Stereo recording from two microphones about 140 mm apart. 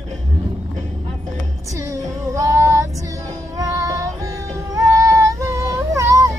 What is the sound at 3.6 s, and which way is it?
Music, 25° right (ahead or behind).